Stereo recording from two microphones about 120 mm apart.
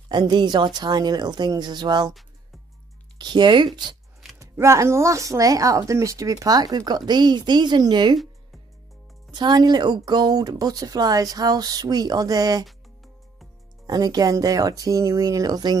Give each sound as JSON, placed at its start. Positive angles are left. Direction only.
{"t": 0.1, "sound": "speech", "side_deg": -40}
{"t": 3.2, "sound": "speech", "side_deg": -40}
{"t": 4.4, "sound": "speech", "side_deg": -25}
{"t": 9.3, "sound": "speech", "side_deg": -35}
{"t": 12.6, "sound": "music", "side_deg": 0}
{"t": 13.8, "sound": "speech", "side_deg": -30}